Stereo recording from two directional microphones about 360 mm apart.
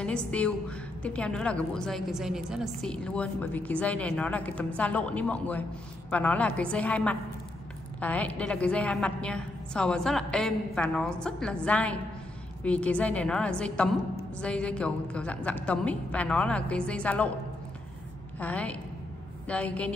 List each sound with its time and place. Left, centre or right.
0.0 s a woman's voice: centre
18.4 s a woman's voice: centre